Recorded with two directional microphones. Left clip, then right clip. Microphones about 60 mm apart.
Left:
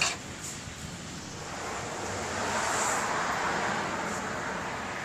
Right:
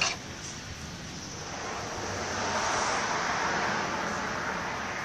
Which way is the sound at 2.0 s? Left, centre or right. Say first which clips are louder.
Right 1 dB; right.